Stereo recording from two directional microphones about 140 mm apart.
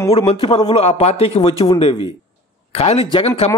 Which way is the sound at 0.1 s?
40° left (ahead or behind).